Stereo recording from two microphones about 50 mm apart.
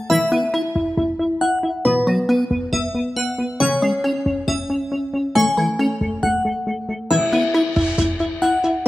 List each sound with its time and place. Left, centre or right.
0.1 s music: centre
7.1 s music: centre